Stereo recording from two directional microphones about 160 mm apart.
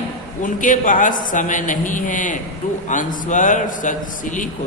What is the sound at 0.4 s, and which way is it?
A man's voice, 55° left (ahead or behind).